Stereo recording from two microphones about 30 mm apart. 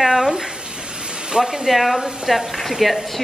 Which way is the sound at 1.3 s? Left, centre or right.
Right.